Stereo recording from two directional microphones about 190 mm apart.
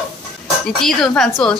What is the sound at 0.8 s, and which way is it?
Speech, centre (ahead or behind).